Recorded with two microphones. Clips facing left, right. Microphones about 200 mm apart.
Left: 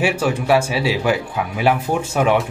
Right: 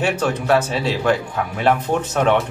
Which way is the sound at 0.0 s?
10° left (ahead or behind).